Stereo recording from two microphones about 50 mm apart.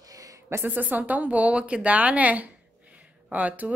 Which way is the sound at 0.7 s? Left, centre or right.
Right.